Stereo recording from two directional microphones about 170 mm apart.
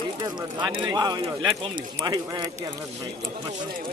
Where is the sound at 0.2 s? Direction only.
25° right (ahead or behind).